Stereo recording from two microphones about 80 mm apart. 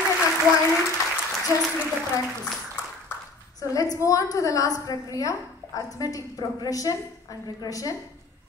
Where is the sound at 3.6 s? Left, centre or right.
Left.